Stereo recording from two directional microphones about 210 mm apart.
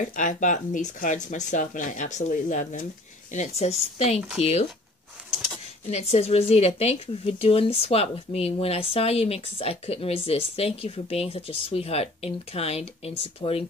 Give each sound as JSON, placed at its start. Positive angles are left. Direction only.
{"t": 0.1, "sound": "speech", "side_deg": 35}
{"t": 5.9, "sound": "speech", "side_deg": 30}